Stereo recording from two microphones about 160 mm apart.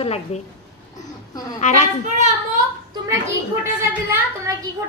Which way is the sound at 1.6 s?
50° left (ahead or behind).